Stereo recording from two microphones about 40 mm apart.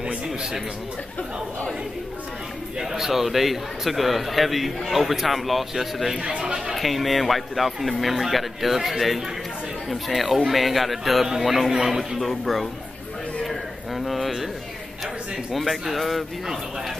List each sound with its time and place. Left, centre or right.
2.8 s a man's voice: centre
6.1 s speech: right
6.7 s a man's voice: centre
13.5 s a sound: centre
15.5 s a man's voice: centre